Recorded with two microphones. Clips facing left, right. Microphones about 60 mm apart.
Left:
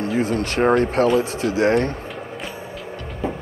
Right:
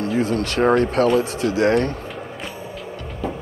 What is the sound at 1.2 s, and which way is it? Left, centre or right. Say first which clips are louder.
Speech: even; left.